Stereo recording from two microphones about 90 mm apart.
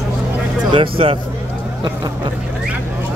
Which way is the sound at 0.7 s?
80° right.